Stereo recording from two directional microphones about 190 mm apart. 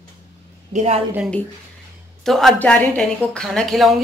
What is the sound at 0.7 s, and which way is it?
Speech, 35° right (ahead or behind).